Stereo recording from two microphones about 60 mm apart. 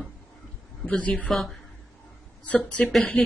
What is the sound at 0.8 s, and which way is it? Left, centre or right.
Speech, left.